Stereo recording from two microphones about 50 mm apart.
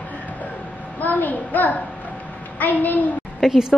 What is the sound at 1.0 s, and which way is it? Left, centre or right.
Child singing, left.